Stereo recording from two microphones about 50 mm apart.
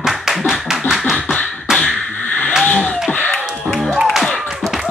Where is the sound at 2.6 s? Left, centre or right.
Left.